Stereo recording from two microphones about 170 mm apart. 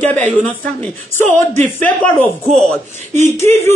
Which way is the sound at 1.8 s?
10° left (ahead or behind).